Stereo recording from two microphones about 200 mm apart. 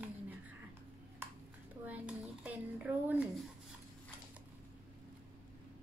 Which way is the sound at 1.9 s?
5° right (ahead or behind).